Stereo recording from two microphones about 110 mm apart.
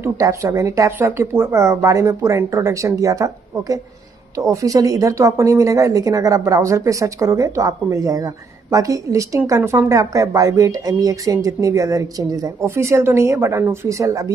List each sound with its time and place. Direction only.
0.0 s speech: 25° right (ahead or behind)